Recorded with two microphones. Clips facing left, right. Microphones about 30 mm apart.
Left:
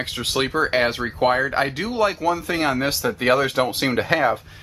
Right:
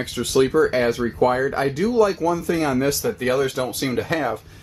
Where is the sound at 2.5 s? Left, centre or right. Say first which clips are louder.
Right 1 dB; left.